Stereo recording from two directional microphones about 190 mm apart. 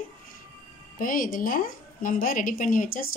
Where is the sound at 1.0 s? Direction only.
45° left (ahead or behind).